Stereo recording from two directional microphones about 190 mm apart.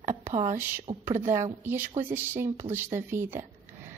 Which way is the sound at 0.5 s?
10° right (ahead or behind).